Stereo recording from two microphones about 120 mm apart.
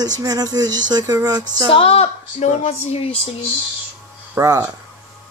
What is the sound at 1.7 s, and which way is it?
A woman's voice, 55° left (ahead or behind).